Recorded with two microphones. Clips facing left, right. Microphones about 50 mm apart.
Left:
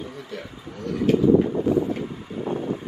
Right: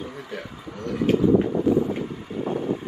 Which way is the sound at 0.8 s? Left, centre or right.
Centre.